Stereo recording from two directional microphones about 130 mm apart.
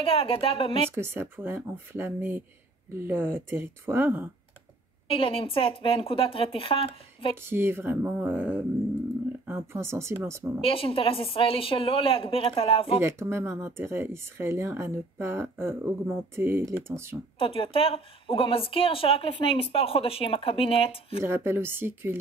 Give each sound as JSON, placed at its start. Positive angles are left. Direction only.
{"t": 0.0, "sound": "a woman's voice", "side_deg": 45}
{"t": 0.9, "sound": "speech", "side_deg": -20}
{"t": 5.0, "sound": "a woman's voice", "side_deg": 45}
{"t": 7.4, "sound": "speech", "side_deg": -15}
{"t": 10.6, "sound": "a woman's voice", "side_deg": 45}
{"t": 13.0, "sound": "speech", "side_deg": -20}
{"t": 17.4, "sound": "a woman's voice", "side_deg": 45}
{"t": 21.2, "sound": "speech", "side_deg": -20}